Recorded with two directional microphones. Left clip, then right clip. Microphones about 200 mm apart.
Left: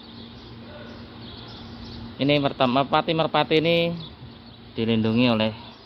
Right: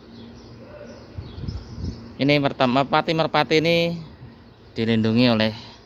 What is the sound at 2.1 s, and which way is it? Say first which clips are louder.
A man's voice: right 2 dB; 20° right (ahead or behind).